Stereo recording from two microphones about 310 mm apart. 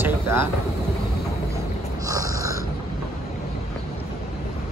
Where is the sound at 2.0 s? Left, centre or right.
Centre.